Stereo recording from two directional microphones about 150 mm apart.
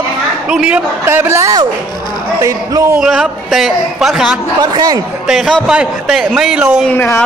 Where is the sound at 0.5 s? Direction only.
5° right (ahead or behind).